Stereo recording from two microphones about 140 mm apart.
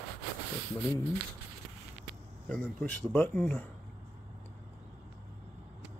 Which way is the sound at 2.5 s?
10° left (ahead or behind).